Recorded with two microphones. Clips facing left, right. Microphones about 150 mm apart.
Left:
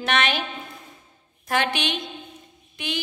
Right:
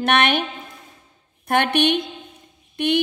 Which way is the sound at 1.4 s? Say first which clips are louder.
Right 6 dB; 60° right (ahead or behind).